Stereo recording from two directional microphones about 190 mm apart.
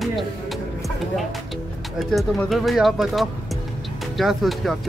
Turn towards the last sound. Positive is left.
turn(degrees=0)  # may be behind; listen again after turning